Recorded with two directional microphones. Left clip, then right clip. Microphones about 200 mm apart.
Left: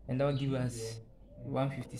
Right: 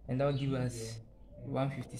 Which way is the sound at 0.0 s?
5° left (ahead or behind).